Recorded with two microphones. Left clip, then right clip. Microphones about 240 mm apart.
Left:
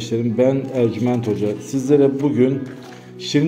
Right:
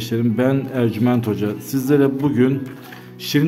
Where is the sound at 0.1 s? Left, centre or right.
Right.